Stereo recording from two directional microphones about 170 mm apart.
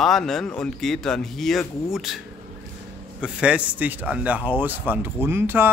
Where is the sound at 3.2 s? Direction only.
5° right (ahead or behind).